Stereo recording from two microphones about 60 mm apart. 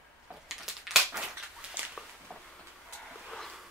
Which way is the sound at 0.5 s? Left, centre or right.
Centre.